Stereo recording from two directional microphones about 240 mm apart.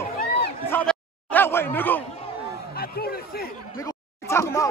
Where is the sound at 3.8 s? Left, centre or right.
Centre.